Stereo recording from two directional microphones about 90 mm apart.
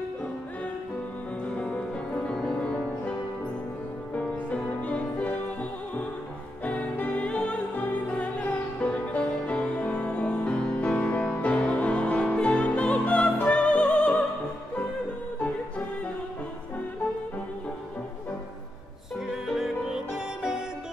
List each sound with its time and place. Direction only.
2.2 s music: 10° left (ahead or behind)
19.1 s music: 5° right (ahead or behind)